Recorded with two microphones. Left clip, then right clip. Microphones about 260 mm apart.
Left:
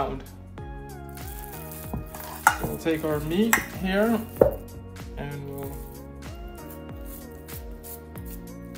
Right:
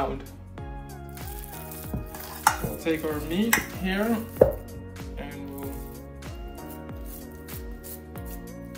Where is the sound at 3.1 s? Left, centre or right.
Centre.